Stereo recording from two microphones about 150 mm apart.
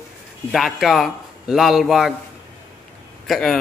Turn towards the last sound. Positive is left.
turn(degrees=5)  # may be behind; listen again after turning